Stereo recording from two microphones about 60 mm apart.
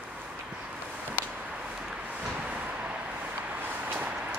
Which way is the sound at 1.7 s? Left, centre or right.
Centre.